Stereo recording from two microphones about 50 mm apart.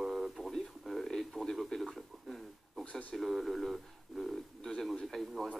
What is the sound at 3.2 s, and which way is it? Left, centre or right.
Speech, centre.